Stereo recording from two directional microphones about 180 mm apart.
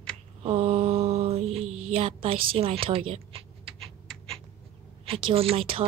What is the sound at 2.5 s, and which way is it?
Speech, 30° right (ahead or behind).